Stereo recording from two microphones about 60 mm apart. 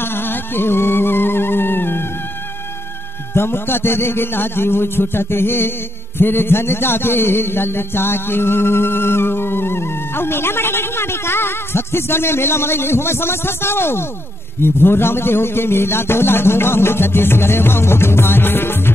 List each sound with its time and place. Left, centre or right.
0.0 s music: left
3.3 s a man's voice: left